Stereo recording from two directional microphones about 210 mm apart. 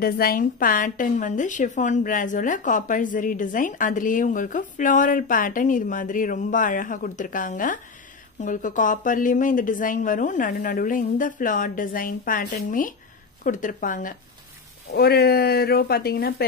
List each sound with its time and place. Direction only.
0.0 s a woman's voice: 45° left (ahead or behind)